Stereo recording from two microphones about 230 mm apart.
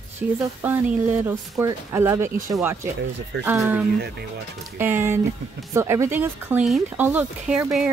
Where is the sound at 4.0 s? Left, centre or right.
Right.